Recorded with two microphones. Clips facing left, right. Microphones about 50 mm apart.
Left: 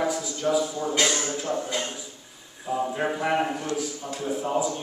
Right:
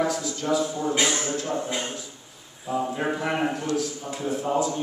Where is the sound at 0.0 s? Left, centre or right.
Centre.